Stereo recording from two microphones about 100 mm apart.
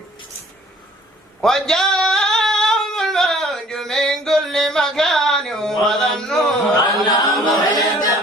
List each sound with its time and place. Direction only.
1.4 s male singing: 5° left (ahead or behind)
7.1 s a capella: 45° left (ahead or behind)